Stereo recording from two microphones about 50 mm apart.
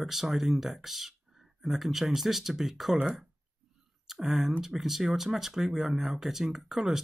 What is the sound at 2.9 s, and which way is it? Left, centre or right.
Speech, right.